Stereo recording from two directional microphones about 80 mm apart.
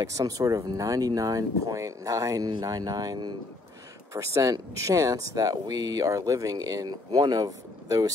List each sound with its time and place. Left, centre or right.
0.0 s speech: right
4.1 s speech: right